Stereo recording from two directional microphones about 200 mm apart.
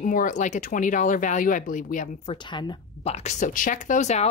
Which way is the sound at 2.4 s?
25° left (ahead or behind).